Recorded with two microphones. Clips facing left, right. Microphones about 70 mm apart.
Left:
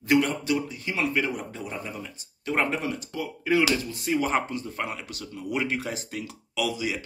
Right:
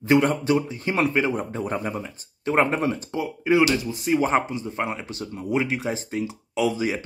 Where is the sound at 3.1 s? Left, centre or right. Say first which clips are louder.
Right 2 dB; right.